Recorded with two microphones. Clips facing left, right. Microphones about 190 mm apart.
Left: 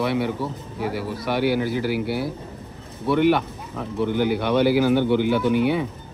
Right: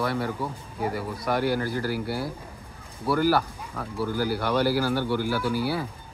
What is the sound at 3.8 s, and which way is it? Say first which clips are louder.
Speech: left 5 dB; 20° left (ahead or behind).